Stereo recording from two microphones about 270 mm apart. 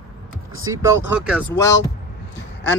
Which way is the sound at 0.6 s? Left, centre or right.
Centre.